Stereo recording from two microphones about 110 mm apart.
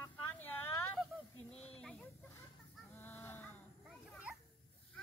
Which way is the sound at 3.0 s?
20° left (ahead or behind).